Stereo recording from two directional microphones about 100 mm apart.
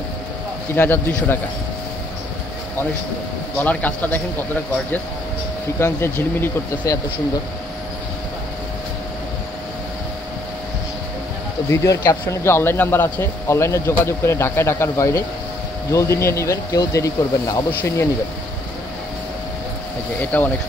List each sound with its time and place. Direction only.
0.7 s a man's voice: 20° left (ahead or behind)
3.6 s a man's voice: 15° left (ahead or behind)
5.8 s a man's voice: 25° left (ahead or behind)
6.8 s speech: 35° left (ahead or behind)
11.7 s a man's voice: 30° left (ahead or behind)
20.2 s a man's voice: 20° left (ahead or behind)